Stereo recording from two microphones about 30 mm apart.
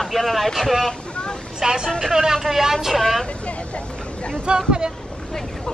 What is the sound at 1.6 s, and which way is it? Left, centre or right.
Speech, right.